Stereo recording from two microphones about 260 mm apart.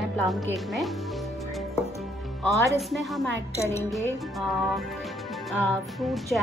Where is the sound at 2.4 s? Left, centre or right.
Centre.